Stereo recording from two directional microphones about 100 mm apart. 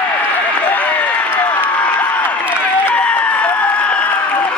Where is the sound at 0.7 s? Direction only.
15° left (ahead or behind).